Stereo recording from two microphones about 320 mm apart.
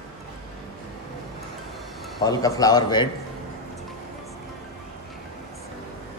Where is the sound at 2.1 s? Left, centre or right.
Centre.